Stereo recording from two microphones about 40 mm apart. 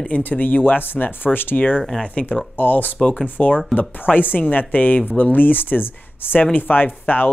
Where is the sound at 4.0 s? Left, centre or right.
Left.